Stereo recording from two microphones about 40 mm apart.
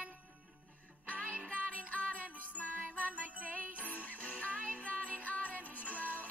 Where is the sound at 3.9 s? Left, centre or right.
Left.